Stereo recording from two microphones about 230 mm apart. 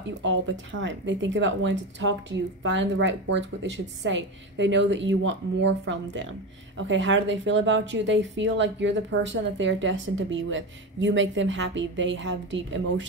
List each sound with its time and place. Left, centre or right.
0.2 s speech: right